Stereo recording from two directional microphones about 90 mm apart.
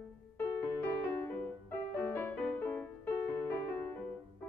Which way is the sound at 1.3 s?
20° left (ahead or behind).